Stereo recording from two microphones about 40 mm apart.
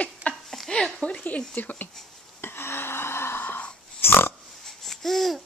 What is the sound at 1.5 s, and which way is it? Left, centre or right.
Speech, left.